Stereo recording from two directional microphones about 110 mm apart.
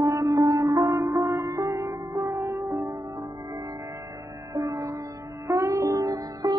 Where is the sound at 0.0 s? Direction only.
35° right (ahead or behind).